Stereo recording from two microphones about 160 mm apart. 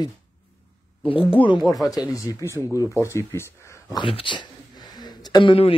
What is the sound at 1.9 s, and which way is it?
Speech, 20° left (ahead or behind).